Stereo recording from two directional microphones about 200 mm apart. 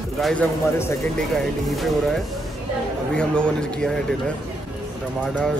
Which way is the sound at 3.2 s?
5° left (ahead or behind).